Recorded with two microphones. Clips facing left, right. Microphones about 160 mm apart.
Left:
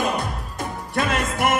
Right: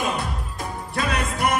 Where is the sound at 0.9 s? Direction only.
50° left (ahead or behind).